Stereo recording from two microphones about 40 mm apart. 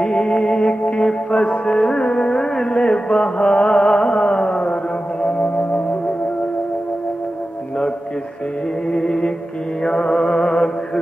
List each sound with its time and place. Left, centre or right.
0.0 s music: centre
5.4 s music: left
8.9 s music: centre